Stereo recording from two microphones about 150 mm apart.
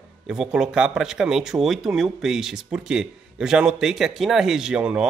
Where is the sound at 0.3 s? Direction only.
5° right (ahead or behind).